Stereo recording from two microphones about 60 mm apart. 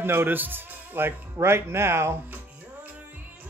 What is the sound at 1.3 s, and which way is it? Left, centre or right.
Speech, right.